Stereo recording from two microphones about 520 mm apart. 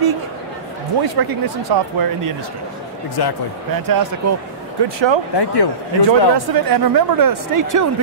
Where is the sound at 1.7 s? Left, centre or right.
Right.